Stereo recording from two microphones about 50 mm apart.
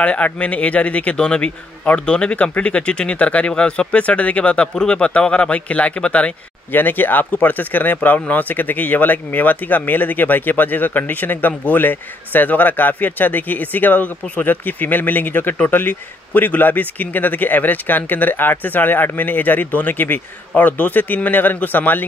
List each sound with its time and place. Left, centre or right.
0.0 s speech: left
6.7 s speech: left